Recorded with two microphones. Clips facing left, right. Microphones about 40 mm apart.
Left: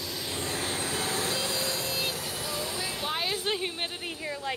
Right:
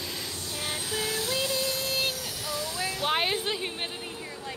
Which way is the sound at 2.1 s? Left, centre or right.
Left.